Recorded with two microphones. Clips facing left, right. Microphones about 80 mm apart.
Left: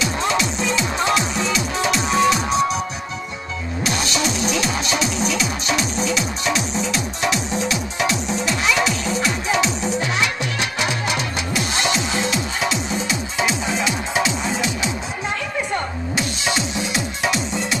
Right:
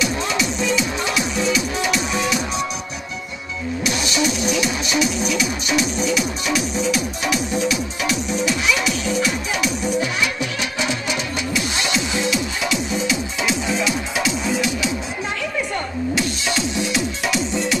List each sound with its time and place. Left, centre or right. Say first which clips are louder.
0.0 s music: left 1 dB; left
3.8 s music: right 1 dB; left
11.5 s music: left 2 dB; left